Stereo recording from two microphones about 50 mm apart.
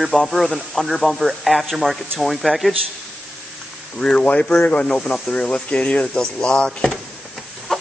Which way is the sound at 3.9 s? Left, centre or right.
Centre.